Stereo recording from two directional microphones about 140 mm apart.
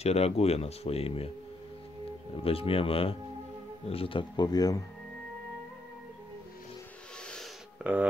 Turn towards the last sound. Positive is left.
turn(degrees=-5)  # may be behind; listen again after turning